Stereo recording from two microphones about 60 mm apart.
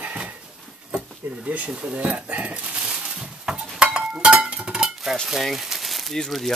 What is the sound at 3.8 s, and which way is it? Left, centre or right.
Stir, centre.